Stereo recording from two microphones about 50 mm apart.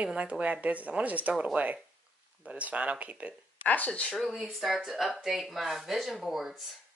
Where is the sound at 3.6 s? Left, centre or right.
Left.